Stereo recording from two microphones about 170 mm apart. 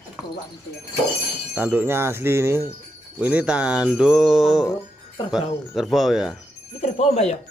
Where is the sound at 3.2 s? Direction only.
5° right (ahead or behind).